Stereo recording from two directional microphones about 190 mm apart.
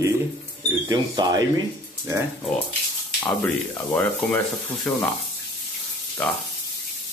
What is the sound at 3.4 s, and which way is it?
Speech, 10° left (ahead or behind).